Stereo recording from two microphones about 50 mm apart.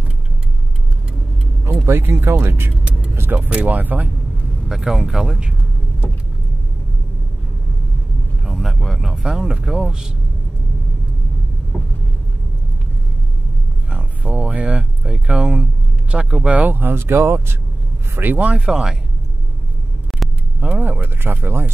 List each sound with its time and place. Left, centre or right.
1.9 s speech: right
3.3 s speech: right
4.6 s speech: centre
8.5 s vehicle: centre
9.1 s speech: centre
11.7 s vehicle: centre
13.8 s speech: right
16.4 s speech: right
16.9 s speech: right
18.7 s speech: centre
20.2 s vehicle: centre
20.8 s speech: right